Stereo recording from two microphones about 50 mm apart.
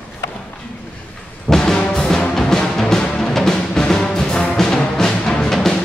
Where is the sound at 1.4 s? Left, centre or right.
Centre.